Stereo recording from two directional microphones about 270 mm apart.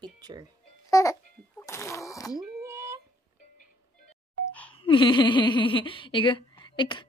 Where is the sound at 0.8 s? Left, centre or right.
Centre.